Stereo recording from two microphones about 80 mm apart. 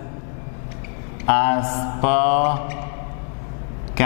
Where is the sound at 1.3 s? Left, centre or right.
Centre.